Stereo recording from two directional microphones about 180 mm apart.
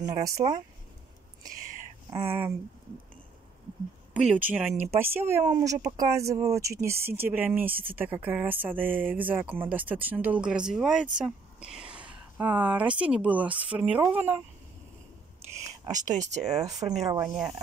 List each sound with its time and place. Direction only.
0.2 s speech: 20° right (ahead or behind)
1.6 s whispering: 50° right (ahead or behind)
2.0 s speech: 15° right (ahead or behind)
4.1 s speech: 5° right (ahead or behind)
15.9 s speech: 45° right (ahead or behind)
16.6 s speech: 20° right (ahead or behind)